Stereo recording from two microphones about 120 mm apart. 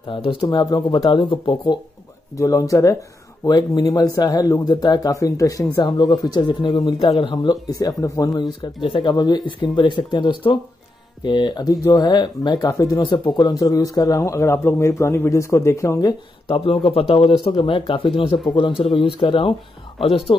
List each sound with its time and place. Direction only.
0.1 s speech: 50° left (ahead or behind)
0.4 s speech: 35° left (ahead or behind)
2.3 s speech: 25° left (ahead or behind)
16.4 s speech: 50° left (ahead or behind)